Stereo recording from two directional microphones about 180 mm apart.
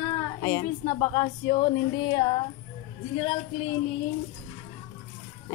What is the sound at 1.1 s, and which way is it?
Speech, 25° left (ahead or behind).